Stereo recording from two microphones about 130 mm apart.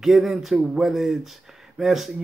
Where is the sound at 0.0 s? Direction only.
Centre (ahead or behind).